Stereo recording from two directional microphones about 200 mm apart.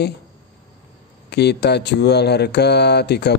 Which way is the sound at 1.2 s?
55° left (ahead or behind).